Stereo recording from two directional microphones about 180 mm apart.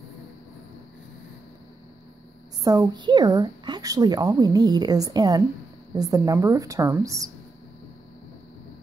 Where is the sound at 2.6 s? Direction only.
20° right (ahead or behind).